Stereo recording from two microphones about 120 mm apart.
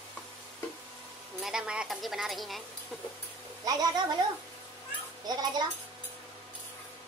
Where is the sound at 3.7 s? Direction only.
30° right (ahead or behind).